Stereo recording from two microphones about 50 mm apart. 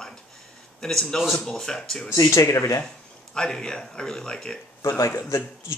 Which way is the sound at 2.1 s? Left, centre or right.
Left.